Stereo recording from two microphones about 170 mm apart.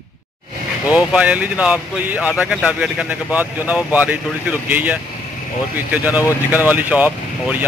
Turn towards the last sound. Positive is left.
turn(degrees=-10)  # may be behind; listen again after turning